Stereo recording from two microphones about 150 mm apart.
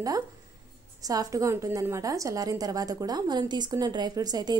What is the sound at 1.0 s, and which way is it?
A woman's voice, 25° right (ahead or behind).